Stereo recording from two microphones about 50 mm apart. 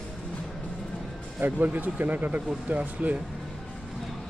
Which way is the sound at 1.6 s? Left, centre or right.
Right.